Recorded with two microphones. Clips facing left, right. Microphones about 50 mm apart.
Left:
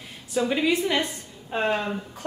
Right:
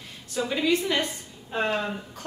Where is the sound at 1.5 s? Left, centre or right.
Centre.